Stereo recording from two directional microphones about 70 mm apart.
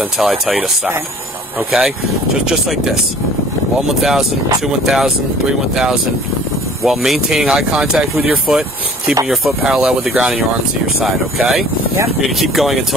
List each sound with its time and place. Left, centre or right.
0.2 s speech: centre
2.4 s speech: centre
4.0 s speech: centre
6.8 s speech: centre